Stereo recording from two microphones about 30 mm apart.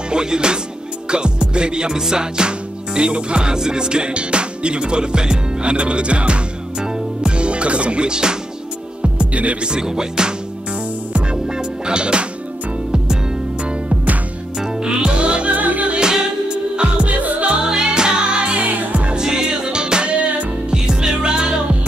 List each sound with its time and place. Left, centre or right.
0.1 s music: right
9.0 s music: right
9.6 s music: right
11.4 s music: right
14.6 s music: right
15.5 s music: right
16.0 s music: right
19.1 s music: right
20.7 s music: right